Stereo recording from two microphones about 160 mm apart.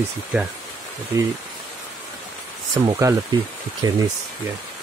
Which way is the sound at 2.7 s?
20° right (ahead or behind).